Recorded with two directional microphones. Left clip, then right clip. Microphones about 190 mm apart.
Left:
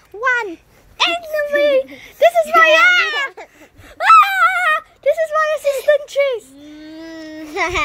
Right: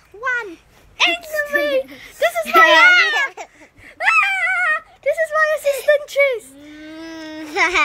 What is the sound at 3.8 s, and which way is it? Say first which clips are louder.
Wail: left 6 dB; 25° left (ahead or behind).